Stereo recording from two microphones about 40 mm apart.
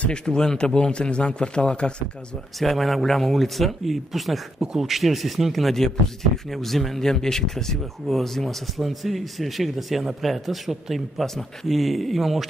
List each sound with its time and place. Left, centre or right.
0.0 s a man's voice: left
2.6 s speech: centre